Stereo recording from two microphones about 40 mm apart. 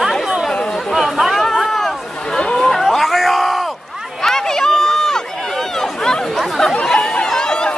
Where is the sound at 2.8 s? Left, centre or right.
Centre.